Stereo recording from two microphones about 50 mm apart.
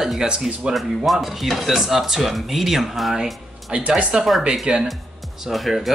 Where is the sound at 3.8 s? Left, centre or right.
Right.